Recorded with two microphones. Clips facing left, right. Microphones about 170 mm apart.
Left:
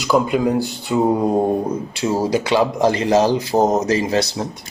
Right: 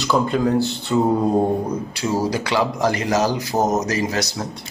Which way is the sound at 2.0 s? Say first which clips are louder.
Left 3 dB; 20° left (ahead or behind).